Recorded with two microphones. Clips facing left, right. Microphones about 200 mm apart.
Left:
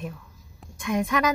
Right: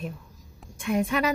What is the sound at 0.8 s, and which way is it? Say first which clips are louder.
Music: even; 30° right (ahead or behind).